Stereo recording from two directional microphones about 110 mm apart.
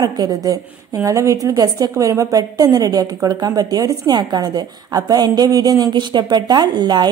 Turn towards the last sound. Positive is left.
turn(degrees=-40)  # may be behind; listen again after turning